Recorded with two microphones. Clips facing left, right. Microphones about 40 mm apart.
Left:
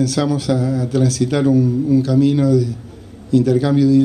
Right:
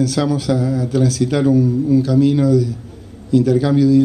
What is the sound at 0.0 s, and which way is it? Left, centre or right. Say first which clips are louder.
Speech: even; centre.